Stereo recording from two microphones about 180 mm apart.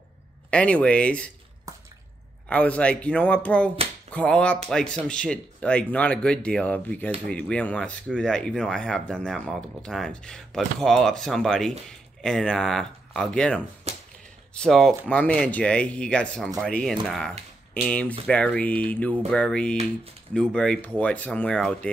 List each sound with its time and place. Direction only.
0.5 s speech: 5° left (ahead or behind)
1.7 s drip: 20° right (ahead or behind)
2.4 s speech: 5° left (ahead or behind)
13.9 s a sound: 35° right (ahead or behind)
14.5 s speech: 5° left (ahead or behind)